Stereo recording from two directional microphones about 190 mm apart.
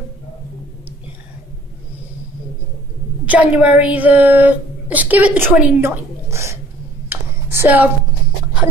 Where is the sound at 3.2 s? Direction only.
5° right (ahead or behind).